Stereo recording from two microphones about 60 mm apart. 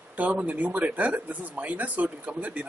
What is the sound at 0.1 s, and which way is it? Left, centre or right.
Speech, right.